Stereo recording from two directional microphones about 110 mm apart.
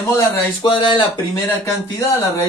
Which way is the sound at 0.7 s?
45° left (ahead or behind).